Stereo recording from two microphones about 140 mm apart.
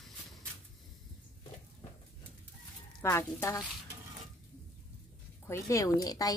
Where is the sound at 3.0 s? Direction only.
20° left (ahead or behind).